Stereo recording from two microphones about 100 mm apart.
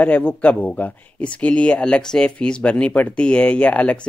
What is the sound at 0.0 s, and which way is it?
Speech, 15° left (ahead or behind).